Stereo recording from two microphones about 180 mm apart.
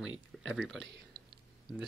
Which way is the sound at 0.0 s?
90° right.